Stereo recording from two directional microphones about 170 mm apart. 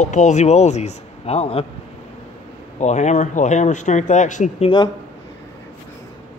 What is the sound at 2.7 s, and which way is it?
Speech, 45° left (ahead or behind).